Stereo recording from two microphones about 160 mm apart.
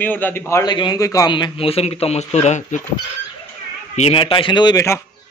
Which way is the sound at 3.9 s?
40° left (ahead or behind).